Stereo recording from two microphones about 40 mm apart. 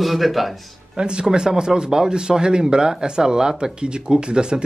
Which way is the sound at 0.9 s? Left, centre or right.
Right.